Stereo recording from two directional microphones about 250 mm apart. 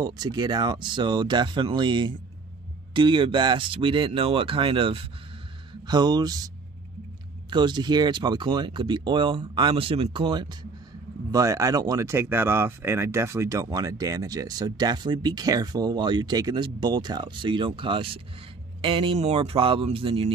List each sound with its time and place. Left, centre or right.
0.0 s speech: centre